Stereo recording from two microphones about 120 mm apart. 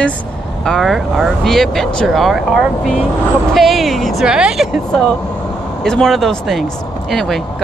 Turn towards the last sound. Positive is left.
turn(degrees=0)  # may be behind; listen again after turning